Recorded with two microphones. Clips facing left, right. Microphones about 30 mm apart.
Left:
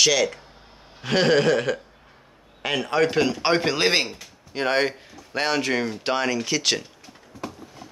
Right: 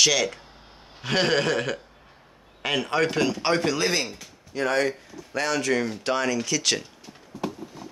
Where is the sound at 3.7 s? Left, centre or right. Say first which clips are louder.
Left 4 dB; left.